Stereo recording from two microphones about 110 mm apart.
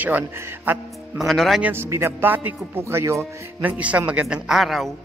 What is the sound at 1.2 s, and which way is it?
Speech, centre (ahead or behind).